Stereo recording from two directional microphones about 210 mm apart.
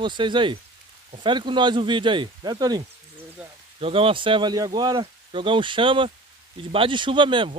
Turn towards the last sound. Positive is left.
turn(degrees=-25)  # may be behind; listen again after turning